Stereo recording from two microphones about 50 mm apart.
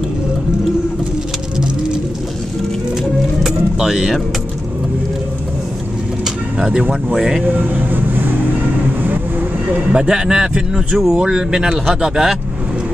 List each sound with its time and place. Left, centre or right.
3.0 s music: centre
6.6 s speech: centre
7.4 s vehicle: right
9.0 s train: right
9.9 s speech: centre